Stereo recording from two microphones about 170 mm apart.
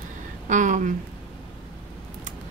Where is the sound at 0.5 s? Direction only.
45° right (ahead or behind).